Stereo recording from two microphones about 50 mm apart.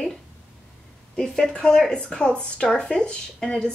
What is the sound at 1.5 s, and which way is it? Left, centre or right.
Speech, centre.